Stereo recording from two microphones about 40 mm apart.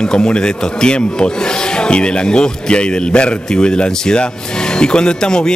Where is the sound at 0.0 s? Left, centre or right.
Left.